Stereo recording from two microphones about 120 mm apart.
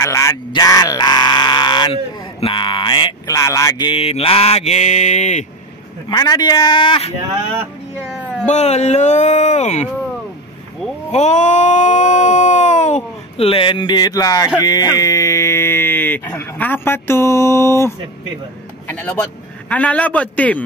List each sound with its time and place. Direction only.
0.0 s a sound: 25° left (ahead or behind)
0.5 s speech: 30° left (ahead or behind)
2.4 s a sound: 45° left (ahead or behind)
3.3 s speech: 25° left (ahead or behind)
4.0 s mantra: 55° left (ahead or behind); by 5.5 s 75° left (ahead or behind)
6.0 s speech: 35° left (ahead or behind); by 7.2 s 50° left (ahead or behind)
8.5 s speech: 65° left (ahead or behind)
11.1 s a sound: 75° left (ahead or behind)
13.4 s speech: 50° left (ahead or behind); by 17.9 s 20° left (ahead or behind)
19.7 s a man's voice: 10° left (ahead or behind)